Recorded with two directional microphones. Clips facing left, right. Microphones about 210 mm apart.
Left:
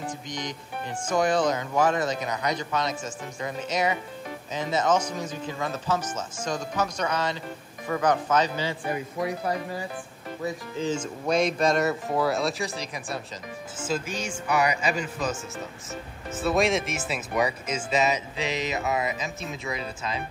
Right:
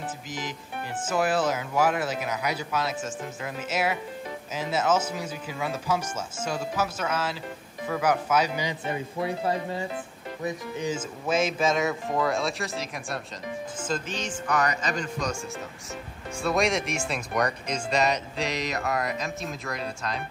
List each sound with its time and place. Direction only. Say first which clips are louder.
0.0 s music: left 1 dB; 5° right (ahead or behind)
1.0 s speech: left 2 dB; 5° right (ahead or behind)
8.8 s speech: left 1 dB; 25° right (ahead or behind)
11.0 s speech: left 2 dB; centre (ahead or behind)
16.3 s speech: left 2 dB; centre (ahead or behind)